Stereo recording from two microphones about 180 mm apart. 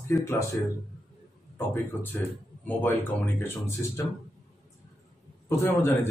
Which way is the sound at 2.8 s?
10° left (ahead or behind).